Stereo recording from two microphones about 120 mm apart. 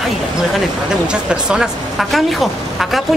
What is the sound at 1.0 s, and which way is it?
Speech, 5° right (ahead or behind).